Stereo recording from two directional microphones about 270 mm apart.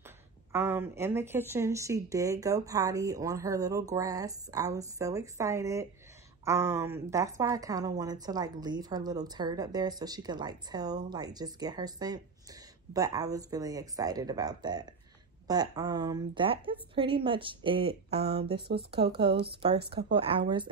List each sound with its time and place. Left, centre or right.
0.5 s speech: centre
19.9 s speech: centre